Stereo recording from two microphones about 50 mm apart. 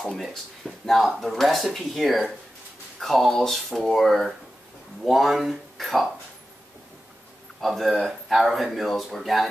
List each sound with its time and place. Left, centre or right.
0.2 s speech: centre
7.6 s speech: centre